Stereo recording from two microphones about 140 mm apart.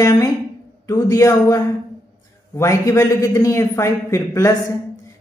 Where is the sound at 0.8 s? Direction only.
20° left (ahead or behind).